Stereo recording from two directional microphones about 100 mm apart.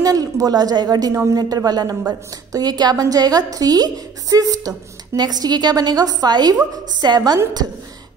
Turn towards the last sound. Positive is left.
turn(degrees=-40)  # may be behind; listen again after turning